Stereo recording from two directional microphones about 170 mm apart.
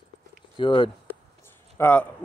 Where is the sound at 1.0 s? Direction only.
15° left (ahead or behind).